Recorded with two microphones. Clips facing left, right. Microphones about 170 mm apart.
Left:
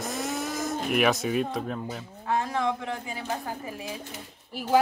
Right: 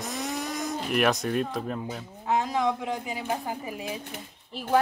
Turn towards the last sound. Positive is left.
turn(degrees=10)  # may be behind; listen again after turning